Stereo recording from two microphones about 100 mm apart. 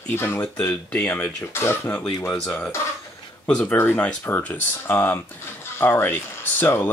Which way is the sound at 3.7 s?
20° left (ahead or behind).